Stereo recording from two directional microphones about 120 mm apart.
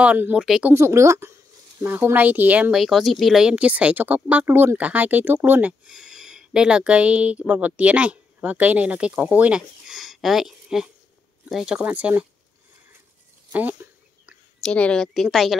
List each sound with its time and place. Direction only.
0.0 s speech: 10° right (ahead or behind)
0.7 s a woman's voice: 25° right (ahead or behind)
2.7 s speech: centre (ahead or behind)
13.5 s speech: 15° right (ahead or behind)
14.6 s a woman's voice: 5° left (ahead or behind)